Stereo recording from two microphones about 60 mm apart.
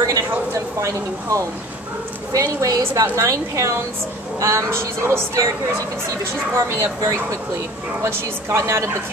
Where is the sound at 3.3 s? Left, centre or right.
Right.